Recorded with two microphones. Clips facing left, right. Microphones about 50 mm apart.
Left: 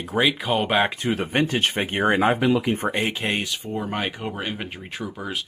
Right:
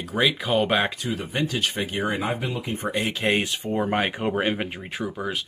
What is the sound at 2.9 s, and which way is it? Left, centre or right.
Speech, left.